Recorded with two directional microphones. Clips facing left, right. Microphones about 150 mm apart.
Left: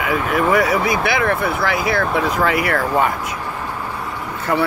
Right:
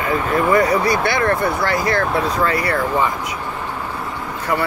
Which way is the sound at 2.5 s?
90° left.